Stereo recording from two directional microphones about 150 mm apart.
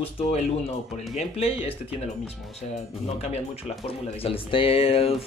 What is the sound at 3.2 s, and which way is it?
A man's voice, 45° left (ahead or behind).